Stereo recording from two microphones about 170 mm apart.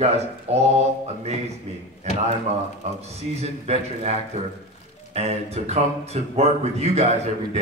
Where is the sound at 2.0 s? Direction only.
40° right (ahead or behind).